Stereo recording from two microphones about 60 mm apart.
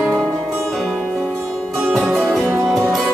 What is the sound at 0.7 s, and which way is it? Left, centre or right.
Music, centre.